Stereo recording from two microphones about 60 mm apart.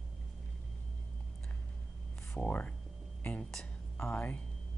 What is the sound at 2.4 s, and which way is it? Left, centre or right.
Speech, left.